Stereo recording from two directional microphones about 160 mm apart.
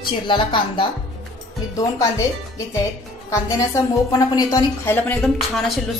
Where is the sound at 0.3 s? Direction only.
30° left (ahead or behind).